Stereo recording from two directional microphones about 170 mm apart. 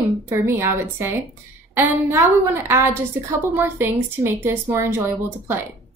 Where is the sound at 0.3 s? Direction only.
15° right (ahead or behind).